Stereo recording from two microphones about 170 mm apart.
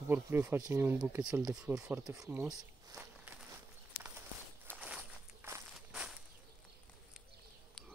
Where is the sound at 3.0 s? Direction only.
10° right (ahead or behind).